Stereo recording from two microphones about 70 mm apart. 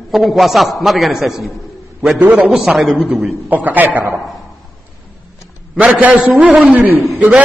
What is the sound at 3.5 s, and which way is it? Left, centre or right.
Speech, right.